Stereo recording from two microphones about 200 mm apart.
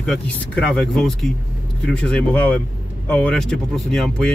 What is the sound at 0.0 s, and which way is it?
A man's voice, 5° left (ahead or behind).